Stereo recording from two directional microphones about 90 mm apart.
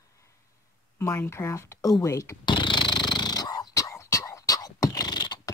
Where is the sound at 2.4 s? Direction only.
60° left (ahead or behind).